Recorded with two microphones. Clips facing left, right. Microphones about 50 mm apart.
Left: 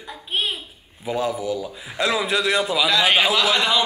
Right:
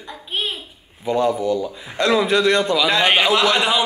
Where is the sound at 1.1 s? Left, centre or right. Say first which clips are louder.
Right 5 dB; centre.